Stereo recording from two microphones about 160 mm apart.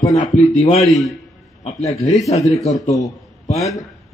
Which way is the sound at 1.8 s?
45° left (ahead or behind).